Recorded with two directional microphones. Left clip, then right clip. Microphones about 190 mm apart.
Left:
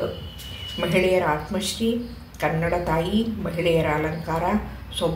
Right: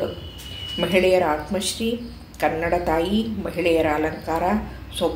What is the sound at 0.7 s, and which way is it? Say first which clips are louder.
Speech: right 3 dB; 35° right (ahead or behind).